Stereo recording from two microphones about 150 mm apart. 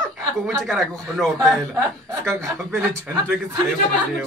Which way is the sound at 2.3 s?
20° right (ahead or behind).